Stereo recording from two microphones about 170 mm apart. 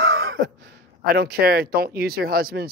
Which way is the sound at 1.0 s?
65° right (ahead or behind).